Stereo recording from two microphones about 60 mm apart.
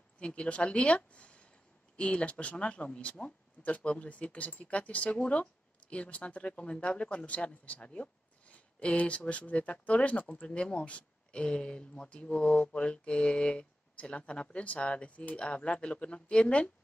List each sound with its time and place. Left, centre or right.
0.2 s speech: centre